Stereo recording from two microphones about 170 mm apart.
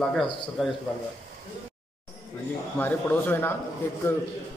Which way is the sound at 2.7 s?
10° left (ahead or behind).